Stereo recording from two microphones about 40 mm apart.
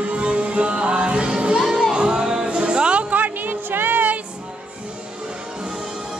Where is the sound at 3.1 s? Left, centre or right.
Right.